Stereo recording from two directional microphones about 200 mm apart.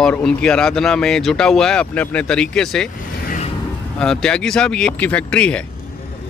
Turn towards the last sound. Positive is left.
turn(degrees=5)  # may be behind; listen again after turning